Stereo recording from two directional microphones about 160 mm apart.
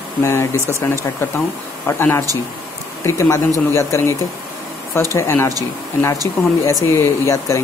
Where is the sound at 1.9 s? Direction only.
15° left (ahead or behind).